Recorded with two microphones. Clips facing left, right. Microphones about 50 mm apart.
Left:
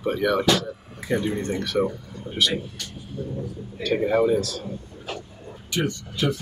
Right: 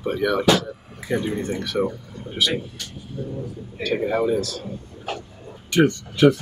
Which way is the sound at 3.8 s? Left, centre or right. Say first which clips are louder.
Left 1 dB; centre.